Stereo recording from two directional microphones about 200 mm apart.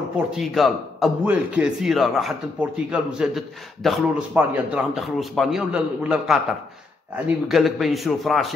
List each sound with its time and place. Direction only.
0.3 s a man's voice: centre (ahead or behind)